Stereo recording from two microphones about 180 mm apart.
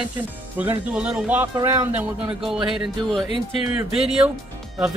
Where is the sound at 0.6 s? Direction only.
5° right (ahead or behind).